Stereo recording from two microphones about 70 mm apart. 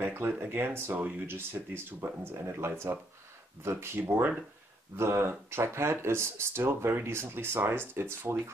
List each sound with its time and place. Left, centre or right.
0.0 s a sound: right
0.4 s speech: right
4.0 s speech: right